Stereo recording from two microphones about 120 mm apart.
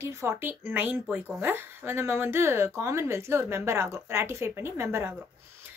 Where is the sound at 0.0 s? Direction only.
20° right (ahead or behind).